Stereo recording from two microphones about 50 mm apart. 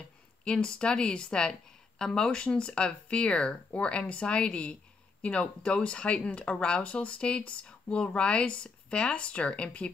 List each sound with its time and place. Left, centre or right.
0.5 s a woman's voice: centre